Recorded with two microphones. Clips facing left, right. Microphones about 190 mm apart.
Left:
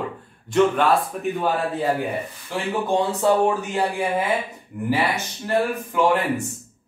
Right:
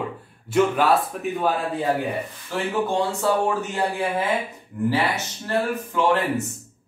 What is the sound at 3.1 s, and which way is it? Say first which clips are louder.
Speech: left 3 dB; 20° left (ahead or behind).